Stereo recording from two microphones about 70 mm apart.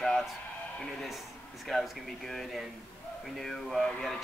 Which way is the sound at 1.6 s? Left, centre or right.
Centre.